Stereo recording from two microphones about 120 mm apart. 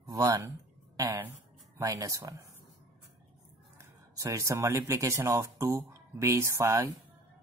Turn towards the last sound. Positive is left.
turn(degrees=-25)  # may be behind; listen again after turning